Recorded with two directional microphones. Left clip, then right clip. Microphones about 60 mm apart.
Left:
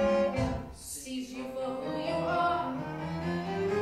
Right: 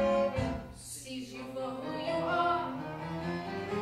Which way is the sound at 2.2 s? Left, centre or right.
Left.